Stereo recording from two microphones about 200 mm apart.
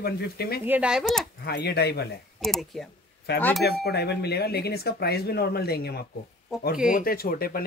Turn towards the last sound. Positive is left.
turn(degrees=50)  # may be behind; listen again after turning